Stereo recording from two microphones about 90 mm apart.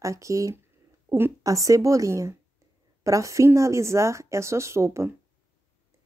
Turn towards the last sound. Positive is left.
turn(degrees=-30)  # may be behind; listen again after turning